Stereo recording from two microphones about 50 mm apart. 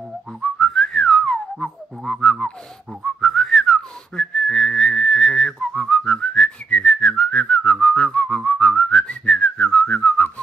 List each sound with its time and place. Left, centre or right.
0.4 s whistling: centre